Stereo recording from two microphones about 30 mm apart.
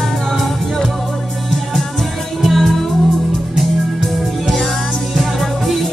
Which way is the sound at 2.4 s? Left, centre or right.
Centre.